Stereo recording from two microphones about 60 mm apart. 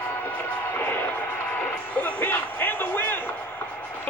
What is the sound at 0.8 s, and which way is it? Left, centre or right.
Music, left.